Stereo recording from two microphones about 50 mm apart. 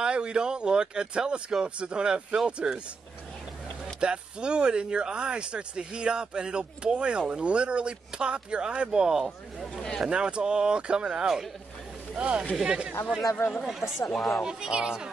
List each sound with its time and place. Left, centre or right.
0.0 s speech: centre
4.0 s speech: centre
9.2 s speech: centre
10.0 s speech: centre
12.2 s speech: right
14.1 s speech: centre
14.4 s speech: centre